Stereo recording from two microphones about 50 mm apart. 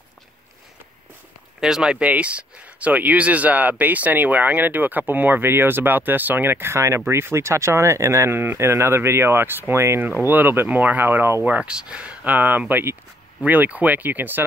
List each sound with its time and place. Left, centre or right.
1.6 s speech: centre; by 7.0 s right
7.1 s speech: right
8.4 s speech: right
10.0 s speech: right
11.4 s speech: right
11.7 s speech: centre; by 14.4 s right